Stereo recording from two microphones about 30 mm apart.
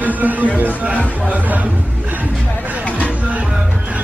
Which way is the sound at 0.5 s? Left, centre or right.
Right.